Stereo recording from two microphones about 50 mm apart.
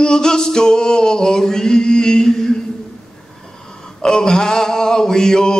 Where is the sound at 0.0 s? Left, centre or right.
Centre.